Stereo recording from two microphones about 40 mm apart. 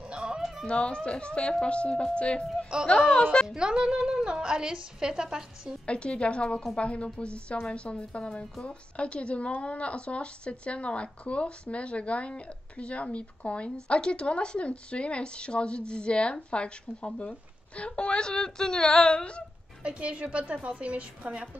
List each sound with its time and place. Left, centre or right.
0.1 s music: right
0.7 s speech: left
2.7 s a woman's voice: right
3.1 s speech: left
3.4 s a woman's voice: centre
5.9 s a woman's voice: left
19.8 s a woman's voice: right